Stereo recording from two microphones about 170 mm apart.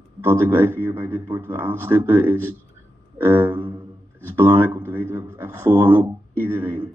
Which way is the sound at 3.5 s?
30° right (ahead or behind).